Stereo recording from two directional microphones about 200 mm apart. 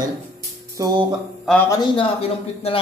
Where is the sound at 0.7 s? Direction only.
20° right (ahead or behind).